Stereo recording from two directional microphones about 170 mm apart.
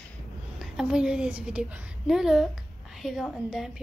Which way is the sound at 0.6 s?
5° right (ahead or behind).